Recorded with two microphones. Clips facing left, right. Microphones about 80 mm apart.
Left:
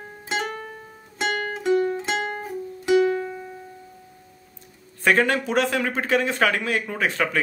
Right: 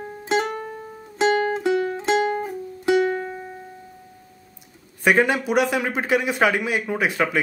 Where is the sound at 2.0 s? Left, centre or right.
Centre.